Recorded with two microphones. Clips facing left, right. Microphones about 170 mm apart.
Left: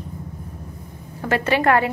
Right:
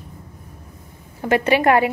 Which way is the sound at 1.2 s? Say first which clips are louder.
Right 3 dB; 15° right (ahead or behind).